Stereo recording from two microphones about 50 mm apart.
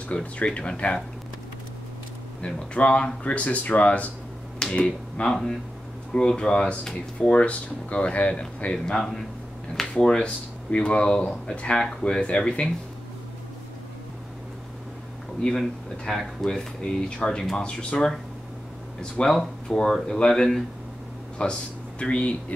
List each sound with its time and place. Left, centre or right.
0.1 s speech: left
2.4 s speech: left
4.6 s speech: centre
15.4 s speech: centre
19.2 s speech: left
21.4 s speech: centre